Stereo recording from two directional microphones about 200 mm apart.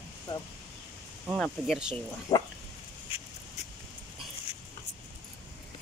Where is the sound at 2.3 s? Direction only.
25° left (ahead or behind).